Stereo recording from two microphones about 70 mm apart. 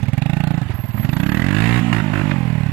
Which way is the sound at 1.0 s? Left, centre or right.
Centre.